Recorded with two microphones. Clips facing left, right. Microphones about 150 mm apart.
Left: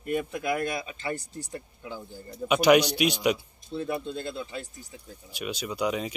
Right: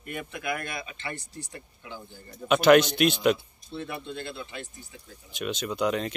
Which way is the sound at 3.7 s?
35° left (ahead or behind).